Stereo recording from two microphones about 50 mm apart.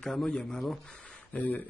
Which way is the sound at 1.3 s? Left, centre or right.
Left.